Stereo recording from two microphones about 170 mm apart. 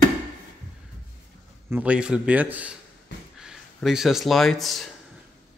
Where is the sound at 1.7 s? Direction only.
10° right (ahead or behind).